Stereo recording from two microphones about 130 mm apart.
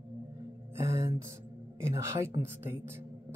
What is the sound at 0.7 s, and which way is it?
Music, 20° right (ahead or behind).